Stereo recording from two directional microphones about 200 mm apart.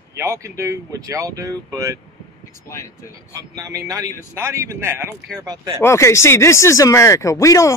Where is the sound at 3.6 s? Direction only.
15° right (ahead or behind).